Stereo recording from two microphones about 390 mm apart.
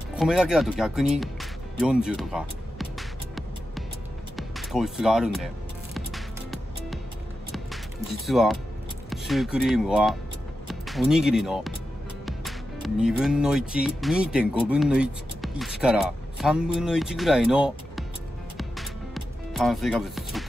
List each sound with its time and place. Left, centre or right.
0.1 s music: centre
4.4 s speech: centre
5.9 s music: centre
9.1 s speech: centre
18.6 s music: centre